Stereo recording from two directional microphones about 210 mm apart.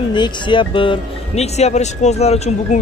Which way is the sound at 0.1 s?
20° left (ahead or behind).